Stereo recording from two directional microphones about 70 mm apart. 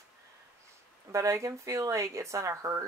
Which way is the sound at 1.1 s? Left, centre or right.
Right.